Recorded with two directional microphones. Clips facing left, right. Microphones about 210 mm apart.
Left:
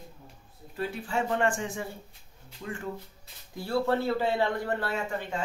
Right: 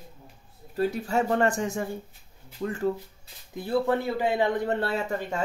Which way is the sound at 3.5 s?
20° right (ahead or behind).